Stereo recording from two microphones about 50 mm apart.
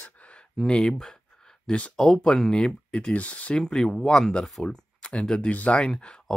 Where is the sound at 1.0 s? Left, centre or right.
Centre.